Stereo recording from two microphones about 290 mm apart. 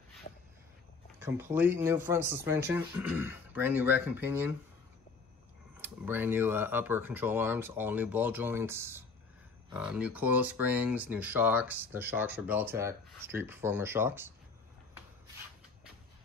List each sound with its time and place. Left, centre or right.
1.2 s speech: centre
5.8 s speech: centre